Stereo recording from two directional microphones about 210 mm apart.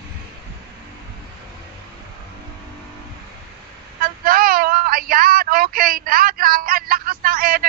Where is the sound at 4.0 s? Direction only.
45° right (ahead or behind).